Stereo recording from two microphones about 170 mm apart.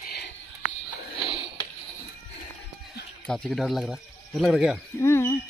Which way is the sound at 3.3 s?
5° left (ahead or behind).